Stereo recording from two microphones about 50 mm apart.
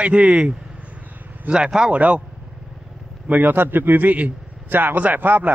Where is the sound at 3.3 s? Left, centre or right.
Right.